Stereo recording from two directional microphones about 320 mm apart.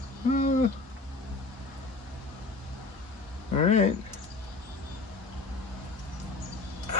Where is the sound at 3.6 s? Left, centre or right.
Left.